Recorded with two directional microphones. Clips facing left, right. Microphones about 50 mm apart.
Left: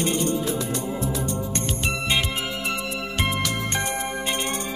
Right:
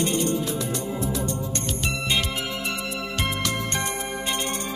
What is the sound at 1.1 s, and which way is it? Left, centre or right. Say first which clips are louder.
Music: even; centre.